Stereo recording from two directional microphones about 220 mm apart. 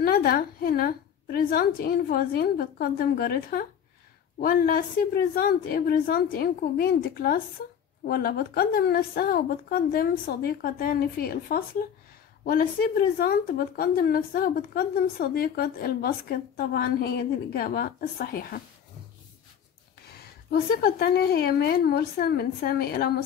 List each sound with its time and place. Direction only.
0.0 s a woman's voice: 45° left (ahead or behind)
20.5 s a woman's voice: 45° left (ahead or behind)